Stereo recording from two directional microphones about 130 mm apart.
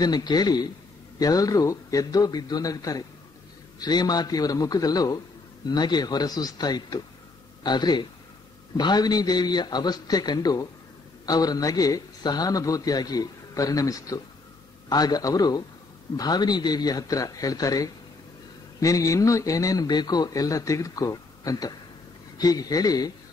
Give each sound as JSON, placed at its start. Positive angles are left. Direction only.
{"t": 0.0, "sound": "a man's voice", "side_deg": 30}